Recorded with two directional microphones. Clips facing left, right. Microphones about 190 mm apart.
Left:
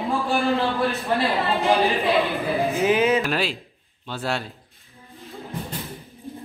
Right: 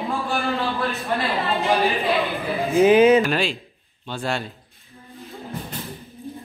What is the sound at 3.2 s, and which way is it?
A man's voice, 5° left (ahead or behind).